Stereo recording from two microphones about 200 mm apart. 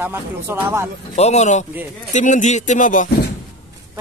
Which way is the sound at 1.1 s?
35° left (ahead or behind).